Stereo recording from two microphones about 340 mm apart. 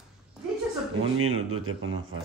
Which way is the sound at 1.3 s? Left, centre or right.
Right.